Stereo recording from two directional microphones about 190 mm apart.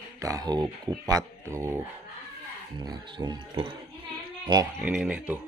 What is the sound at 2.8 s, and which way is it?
Speech, 20° right (ahead or behind).